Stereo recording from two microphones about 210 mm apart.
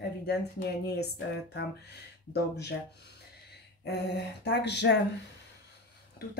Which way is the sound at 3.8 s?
50° left (ahead or behind).